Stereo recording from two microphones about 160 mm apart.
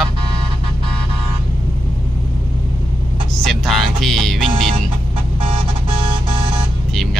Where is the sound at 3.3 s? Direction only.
Centre (ahead or behind).